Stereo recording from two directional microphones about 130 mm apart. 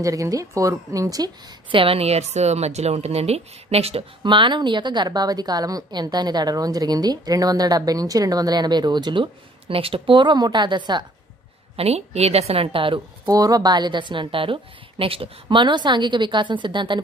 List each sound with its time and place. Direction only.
0.0 s a woman's voice: 25° right (ahead or behind)
1.8 s a woman's voice: 50° right (ahead or behind)
4.2 s a woman's voice: 40° right (ahead or behind)
11.7 s a woman's voice: 50° right (ahead or behind)
13.3 s a woman's voice: 30° right (ahead or behind)